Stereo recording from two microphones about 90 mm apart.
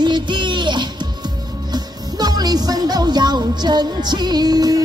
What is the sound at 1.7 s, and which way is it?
Music, 50° right (ahead or behind).